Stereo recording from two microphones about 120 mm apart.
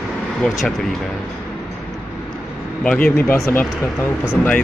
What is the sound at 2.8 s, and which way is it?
Speech, 10° left (ahead or behind).